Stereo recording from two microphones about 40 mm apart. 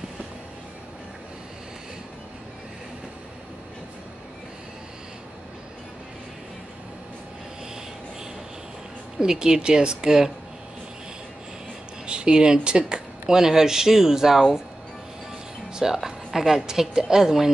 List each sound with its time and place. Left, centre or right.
9.2 s speech: centre
12.1 s speech: right
15.7 s speech: centre